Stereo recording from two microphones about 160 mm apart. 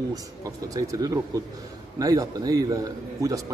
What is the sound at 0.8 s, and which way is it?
Speech, 20° right (ahead or behind).